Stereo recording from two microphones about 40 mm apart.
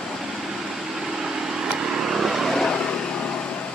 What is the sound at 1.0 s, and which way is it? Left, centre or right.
Vehicle, centre.